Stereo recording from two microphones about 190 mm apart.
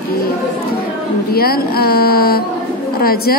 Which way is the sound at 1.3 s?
55° left (ahead or behind).